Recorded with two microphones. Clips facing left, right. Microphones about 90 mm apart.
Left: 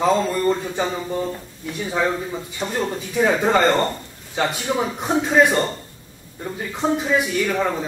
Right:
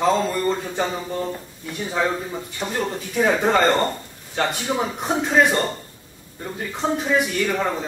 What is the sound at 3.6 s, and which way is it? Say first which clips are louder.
Speech: left 1 dB; 15° right (ahead or behind).